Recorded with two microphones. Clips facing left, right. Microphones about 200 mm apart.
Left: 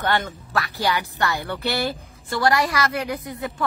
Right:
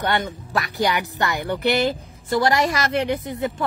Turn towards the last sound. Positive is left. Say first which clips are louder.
# right 5 dB
turn(degrees=-25)  # may be behind; listen again after turning